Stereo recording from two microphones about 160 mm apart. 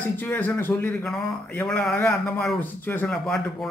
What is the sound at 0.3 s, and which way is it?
Speech, 10° left (ahead or behind).